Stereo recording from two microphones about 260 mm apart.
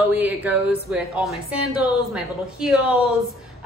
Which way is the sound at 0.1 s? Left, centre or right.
Centre.